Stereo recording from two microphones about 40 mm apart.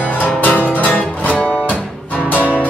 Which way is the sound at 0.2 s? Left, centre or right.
Left.